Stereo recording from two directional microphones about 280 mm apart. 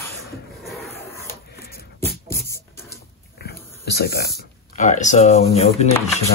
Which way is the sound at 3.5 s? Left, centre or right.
Left.